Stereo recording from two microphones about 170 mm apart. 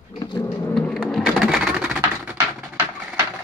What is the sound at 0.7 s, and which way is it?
Typewriter, 5° left (ahead or behind).